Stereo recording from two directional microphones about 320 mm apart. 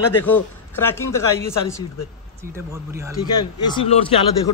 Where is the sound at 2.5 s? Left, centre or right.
Centre.